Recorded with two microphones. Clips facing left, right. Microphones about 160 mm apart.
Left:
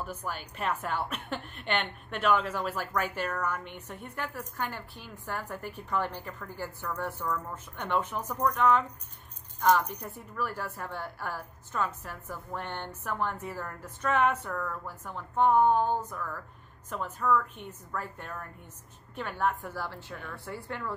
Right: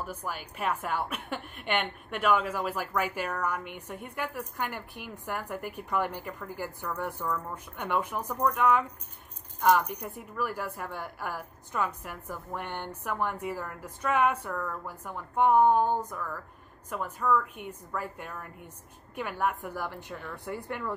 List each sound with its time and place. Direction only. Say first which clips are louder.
0.0 s a woman's voice: even; 10° right (ahead or behind)